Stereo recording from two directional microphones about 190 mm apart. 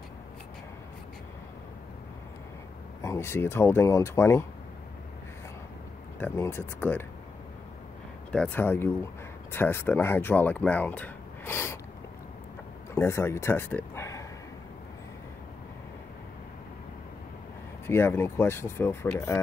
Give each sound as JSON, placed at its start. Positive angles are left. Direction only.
{"t": 3.0, "sound": "speech", "side_deg": 15}
{"t": 6.1, "sound": "speech", "side_deg": 10}
{"t": 8.3, "sound": "speech", "side_deg": 10}
{"t": 12.9, "sound": "speech", "side_deg": 15}
{"t": 17.8, "sound": "speech", "side_deg": 10}